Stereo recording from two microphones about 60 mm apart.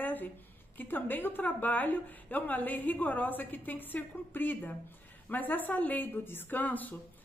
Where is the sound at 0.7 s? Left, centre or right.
Left.